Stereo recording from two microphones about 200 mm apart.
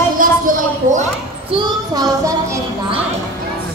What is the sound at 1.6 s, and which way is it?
Child singing, 20° right (ahead or behind).